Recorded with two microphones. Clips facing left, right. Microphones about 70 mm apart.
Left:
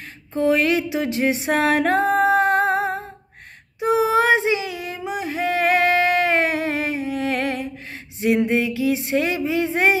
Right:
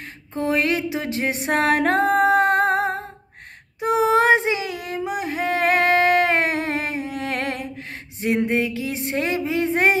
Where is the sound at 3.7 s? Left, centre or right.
Right.